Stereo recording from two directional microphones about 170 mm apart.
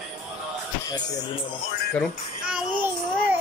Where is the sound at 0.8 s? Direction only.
20° left (ahead or behind).